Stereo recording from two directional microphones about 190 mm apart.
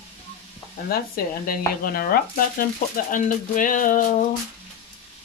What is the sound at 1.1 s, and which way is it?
Speech, 50° left (ahead or behind).